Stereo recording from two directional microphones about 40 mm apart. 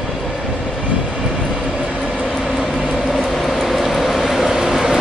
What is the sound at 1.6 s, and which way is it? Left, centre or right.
Train, centre.